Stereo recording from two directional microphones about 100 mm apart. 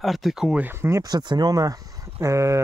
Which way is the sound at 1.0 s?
45° right (ahead or behind).